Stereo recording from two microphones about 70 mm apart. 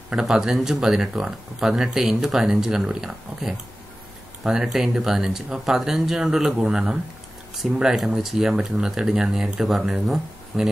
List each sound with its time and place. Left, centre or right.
0.1 s speech: centre